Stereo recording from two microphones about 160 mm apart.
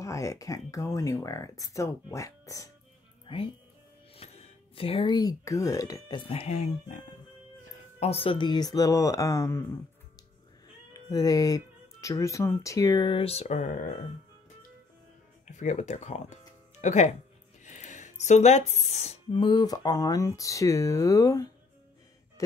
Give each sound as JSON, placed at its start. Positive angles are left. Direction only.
{"t": 0.0, "sound": "speech", "side_deg": 20}
{"t": 3.3, "sound": "speech", "side_deg": 35}
{"t": 8.0, "sound": "speech", "side_deg": 40}
{"t": 10.9, "sound": "speech", "side_deg": 20}
{"t": 15.4, "sound": "speech", "side_deg": 50}
{"t": 19.3, "sound": "speech", "side_deg": 25}